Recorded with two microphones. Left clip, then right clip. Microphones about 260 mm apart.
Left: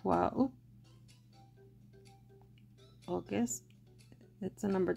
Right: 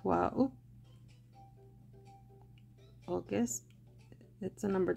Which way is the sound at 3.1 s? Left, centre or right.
Centre.